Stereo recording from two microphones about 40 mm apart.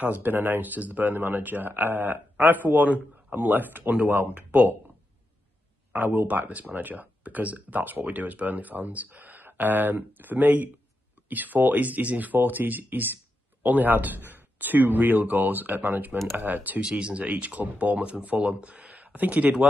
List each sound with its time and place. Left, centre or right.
0.0 s speech: right
1.1 s a man's voice: right
4.3 s speech: right
5.9 s speech: right
16.9 s speech: right